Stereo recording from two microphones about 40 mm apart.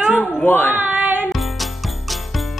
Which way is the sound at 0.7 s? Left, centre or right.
Right.